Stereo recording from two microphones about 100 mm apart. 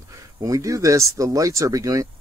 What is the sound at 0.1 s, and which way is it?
Speech, 35° right (ahead or behind).